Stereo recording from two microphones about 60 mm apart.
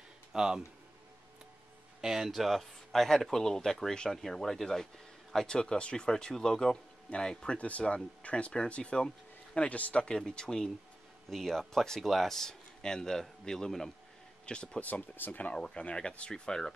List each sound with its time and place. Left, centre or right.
0.3 s speech: centre
2.0 s a man's voice: centre
9.7 s a man's voice: left
15.5 s a man's voice: centre